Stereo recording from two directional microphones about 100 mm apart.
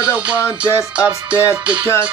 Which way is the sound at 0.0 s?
10° right (ahead or behind).